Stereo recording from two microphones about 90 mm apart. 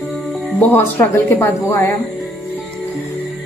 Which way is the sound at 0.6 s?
25° left (ahead or behind).